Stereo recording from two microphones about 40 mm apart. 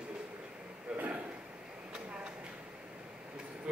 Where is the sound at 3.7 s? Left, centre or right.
Right.